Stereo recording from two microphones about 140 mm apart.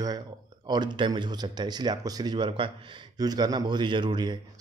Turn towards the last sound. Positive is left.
turn(degrees=-30)  # may be behind; listen again after turning